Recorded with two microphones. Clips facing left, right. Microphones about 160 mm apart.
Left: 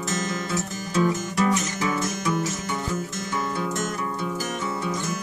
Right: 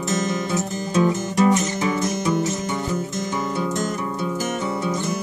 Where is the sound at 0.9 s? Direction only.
20° right (ahead or behind).